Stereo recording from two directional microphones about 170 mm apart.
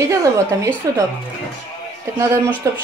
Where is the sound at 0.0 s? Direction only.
20° right (ahead or behind).